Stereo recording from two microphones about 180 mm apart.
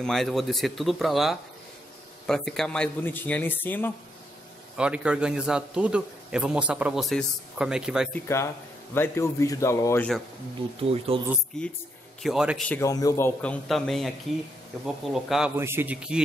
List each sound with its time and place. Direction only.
0.0 s a man's voice: centre (ahead or behind)
4.7 s a man's voice: 5° right (ahead or behind)
8.1 s speech: 15° left (ahead or behind)
10.8 s speech: 30° right (ahead or behind)
12.2 s a man's voice: centre (ahead or behind)
12.6 s speech: 15° left (ahead or behind)
13.4 s a man's voice: 5° left (ahead or behind)
15.1 s a man's voice: centre (ahead or behind)